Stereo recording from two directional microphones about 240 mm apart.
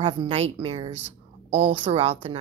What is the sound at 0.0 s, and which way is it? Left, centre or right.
A woman's voice, right.